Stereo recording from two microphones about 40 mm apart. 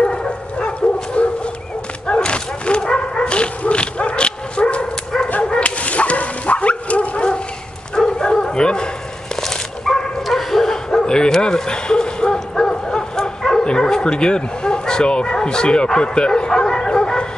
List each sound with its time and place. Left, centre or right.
0.0 s dog: left
5.4 s bow-wow: left
9.4 s dog: centre
10.2 s bow-wow: centre